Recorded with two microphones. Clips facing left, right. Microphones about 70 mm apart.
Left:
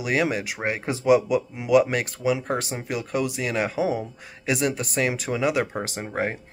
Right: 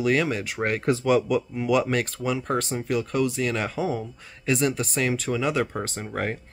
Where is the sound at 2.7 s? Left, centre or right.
Left.